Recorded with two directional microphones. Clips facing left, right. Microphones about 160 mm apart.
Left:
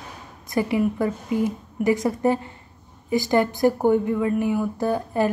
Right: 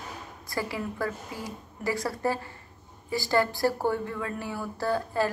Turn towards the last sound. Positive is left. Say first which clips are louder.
# left 5 dB
turn(degrees=20)  # may be behind; listen again after turning